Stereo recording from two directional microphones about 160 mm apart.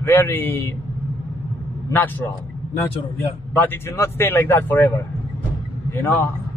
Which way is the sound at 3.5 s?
15° left (ahead or behind).